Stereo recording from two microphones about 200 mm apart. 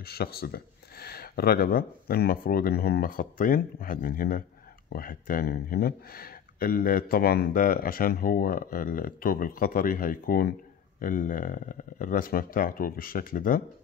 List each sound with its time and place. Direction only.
0.0 s speech: 50° left (ahead or behind)